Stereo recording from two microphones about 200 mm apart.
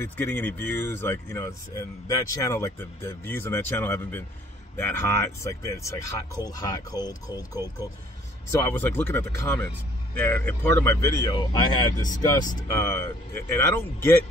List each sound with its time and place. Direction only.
0.0 s speech: 10° left (ahead or behind)
8.5 s speech: 15° left (ahead or behind)